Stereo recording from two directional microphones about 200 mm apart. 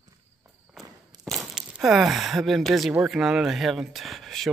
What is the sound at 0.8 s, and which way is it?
Walk, 20° right (ahead or behind).